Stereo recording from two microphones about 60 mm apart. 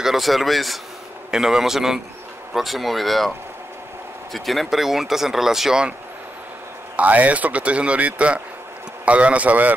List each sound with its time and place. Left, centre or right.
0.0 s a man's voice: centre
7.0 s speech: right